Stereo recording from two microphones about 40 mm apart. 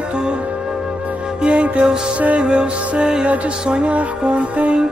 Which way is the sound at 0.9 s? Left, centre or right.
Right.